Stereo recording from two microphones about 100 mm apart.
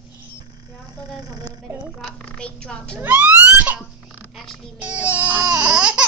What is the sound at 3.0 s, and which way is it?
Speech, 15° right (ahead or behind).